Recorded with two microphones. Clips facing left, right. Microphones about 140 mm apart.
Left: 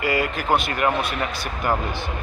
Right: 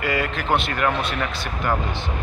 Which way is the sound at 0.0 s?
5° left (ahead or behind).